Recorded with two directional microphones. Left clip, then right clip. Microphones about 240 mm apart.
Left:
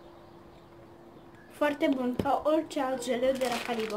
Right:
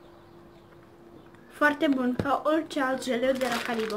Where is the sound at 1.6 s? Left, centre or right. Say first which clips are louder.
Right 4 dB; centre.